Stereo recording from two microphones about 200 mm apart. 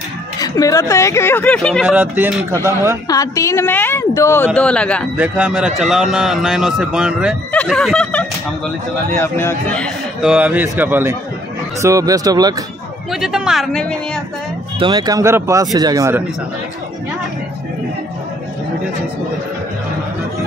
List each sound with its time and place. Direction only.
0.4 s speech: 15° left (ahead or behind)
2.0 s speech: 10° right (ahead or behind)
3.1 s speech: 15° left (ahead or behind)
5.1 s speech: 5° right (ahead or behind); by 9.8 s 10° left (ahead or behind)
10.2 s speech: 5° right (ahead or behind)
13.1 s speech: centre (ahead or behind)
14.8 s speech: 20° right (ahead or behind)